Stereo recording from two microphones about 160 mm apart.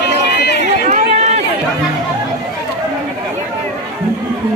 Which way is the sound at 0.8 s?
45° right (ahead or behind).